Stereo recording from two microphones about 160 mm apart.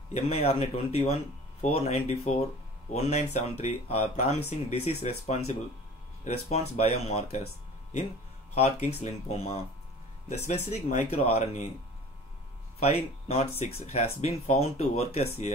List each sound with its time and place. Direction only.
0.1 s speech: 40° left (ahead or behind)
8.5 s speech: 40° left (ahead or behind)
12.8 s speech: 40° left (ahead or behind)